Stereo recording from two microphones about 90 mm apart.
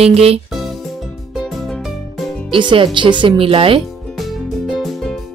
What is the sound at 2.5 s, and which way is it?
Speech, 65° right (ahead or behind).